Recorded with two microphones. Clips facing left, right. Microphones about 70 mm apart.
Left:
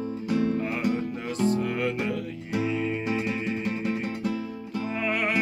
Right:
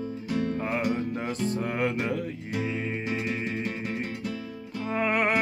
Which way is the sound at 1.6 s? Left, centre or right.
Right.